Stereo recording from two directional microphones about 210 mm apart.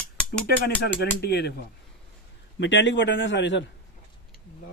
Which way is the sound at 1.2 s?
50° left (ahead or behind).